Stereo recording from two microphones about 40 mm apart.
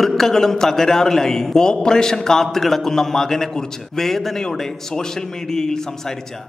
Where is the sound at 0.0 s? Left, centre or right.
Centre.